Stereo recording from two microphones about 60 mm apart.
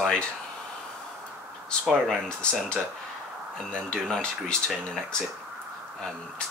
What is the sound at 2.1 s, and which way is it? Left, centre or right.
Speech, centre.